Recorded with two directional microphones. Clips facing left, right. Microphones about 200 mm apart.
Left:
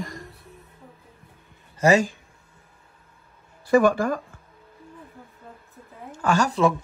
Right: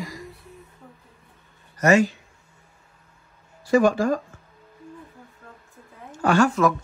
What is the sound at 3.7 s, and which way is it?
Speech, 55° left (ahead or behind).